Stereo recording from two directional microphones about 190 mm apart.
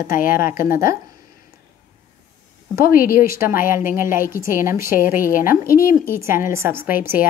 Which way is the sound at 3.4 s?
10° right (ahead or behind).